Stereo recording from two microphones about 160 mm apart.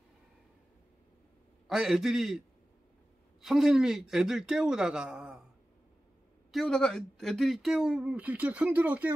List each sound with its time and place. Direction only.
1.7 s speech: 5° right (ahead or behind)
3.4 s speech: centre (ahead or behind)
6.5 s speech: 5° left (ahead or behind)